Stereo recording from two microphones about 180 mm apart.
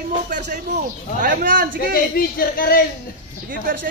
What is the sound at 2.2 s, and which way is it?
Speech, 55° left (ahead or behind).